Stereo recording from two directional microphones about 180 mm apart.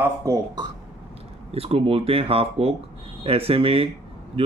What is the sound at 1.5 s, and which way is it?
Speech, 35° right (ahead or behind).